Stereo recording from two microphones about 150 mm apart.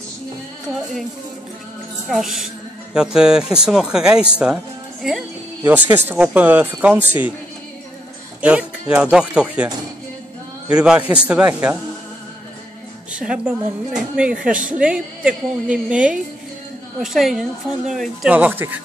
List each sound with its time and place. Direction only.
2.0 s speech: centre (ahead or behind)
5.6 s speech: 10° right (ahead or behind)
8.4 s speech: 10° right (ahead or behind)
10.7 s speech: 5° right (ahead or behind)
13.1 s speech: 5° right (ahead or behind)
18.3 s speech: 10° right (ahead or behind)